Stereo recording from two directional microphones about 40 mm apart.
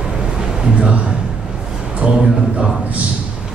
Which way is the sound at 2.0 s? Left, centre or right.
Right.